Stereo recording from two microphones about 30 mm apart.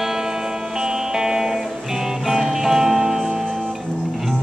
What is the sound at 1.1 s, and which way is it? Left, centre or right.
Music, right.